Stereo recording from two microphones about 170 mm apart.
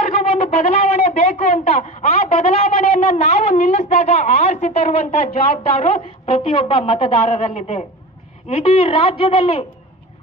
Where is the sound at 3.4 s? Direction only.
40° left (ahead or behind).